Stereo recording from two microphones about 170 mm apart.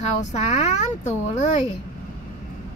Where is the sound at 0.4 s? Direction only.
40° left (ahead or behind).